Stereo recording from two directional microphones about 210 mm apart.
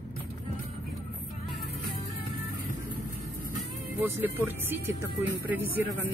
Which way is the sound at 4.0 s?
10° right (ahead or behind).